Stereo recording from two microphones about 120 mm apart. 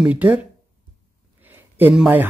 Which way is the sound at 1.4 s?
15° right (ahead or behind).